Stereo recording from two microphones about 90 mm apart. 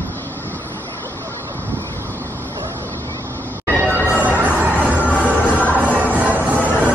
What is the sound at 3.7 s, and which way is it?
Music, 20° right (ahead or behind).